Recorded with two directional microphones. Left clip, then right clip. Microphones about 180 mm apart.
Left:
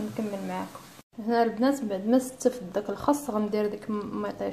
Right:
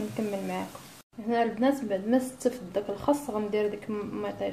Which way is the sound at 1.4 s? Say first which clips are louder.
Left 1 dB; 10° left (ahead or behind).